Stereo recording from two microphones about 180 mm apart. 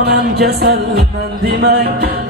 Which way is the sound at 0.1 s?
65° right (ahead or behind).